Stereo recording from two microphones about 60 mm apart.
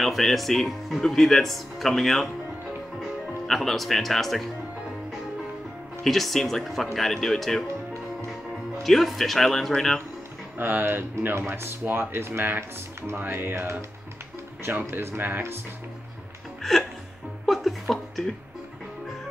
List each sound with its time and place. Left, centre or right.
0.0 s speech: centre
6.0 s speech: centre
7.6 s music: right
8.8 s speech: centre
10.6 s speech: right
17.5 s a sound: centre